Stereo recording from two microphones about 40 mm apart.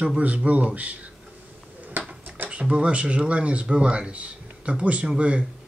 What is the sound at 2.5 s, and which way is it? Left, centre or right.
Speech, right.